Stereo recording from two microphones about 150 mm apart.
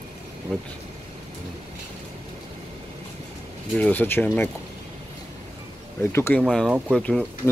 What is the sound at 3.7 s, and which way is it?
Speech, 10° left (ahead or behind).